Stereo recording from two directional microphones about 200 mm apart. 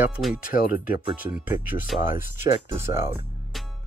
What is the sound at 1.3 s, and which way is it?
Speech, 5° right (ahead or behind).